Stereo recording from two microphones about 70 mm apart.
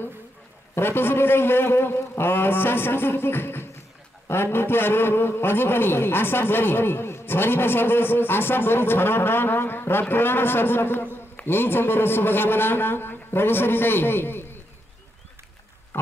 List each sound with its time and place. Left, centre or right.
0.7 s a man's voice: left